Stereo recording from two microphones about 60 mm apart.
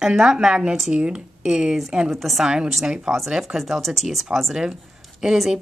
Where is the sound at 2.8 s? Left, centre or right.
Centre.